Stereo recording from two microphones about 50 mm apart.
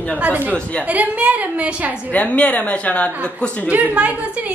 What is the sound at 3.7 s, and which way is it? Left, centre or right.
Speech, right.